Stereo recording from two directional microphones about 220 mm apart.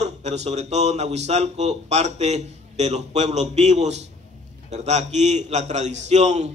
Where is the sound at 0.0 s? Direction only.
30° right (ahead or behind).